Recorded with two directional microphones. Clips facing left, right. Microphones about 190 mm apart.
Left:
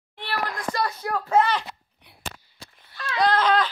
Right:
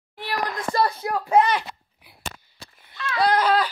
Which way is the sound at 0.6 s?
25° right (ahead or behind).